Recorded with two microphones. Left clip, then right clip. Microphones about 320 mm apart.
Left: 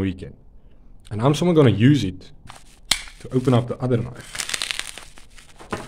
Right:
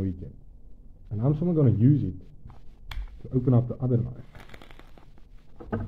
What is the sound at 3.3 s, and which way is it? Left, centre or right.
Speech, centre.